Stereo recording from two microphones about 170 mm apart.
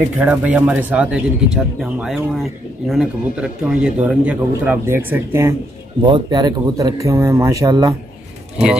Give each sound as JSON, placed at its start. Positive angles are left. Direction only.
{"t": 0.2, "sound": "speech", "side_deg": -10}
{"t": 6.0, "sound": "speech", "side_deg": -25}